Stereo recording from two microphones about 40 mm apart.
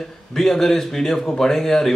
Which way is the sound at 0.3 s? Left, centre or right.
Centre.